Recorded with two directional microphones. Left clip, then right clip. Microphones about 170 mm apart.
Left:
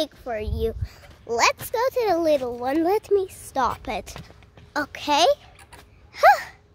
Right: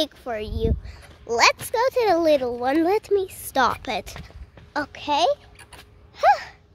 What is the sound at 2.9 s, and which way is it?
Speech, centre (ahead or behind).